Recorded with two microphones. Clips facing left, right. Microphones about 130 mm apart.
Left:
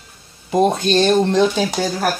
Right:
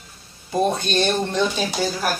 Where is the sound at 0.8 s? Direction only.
90° left.